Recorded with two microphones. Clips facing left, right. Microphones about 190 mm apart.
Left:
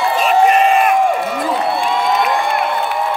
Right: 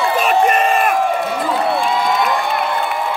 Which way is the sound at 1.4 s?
Centre (ahead or behind).